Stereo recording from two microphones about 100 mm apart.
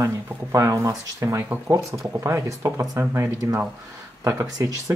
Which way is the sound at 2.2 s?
25° right (ahead or behind).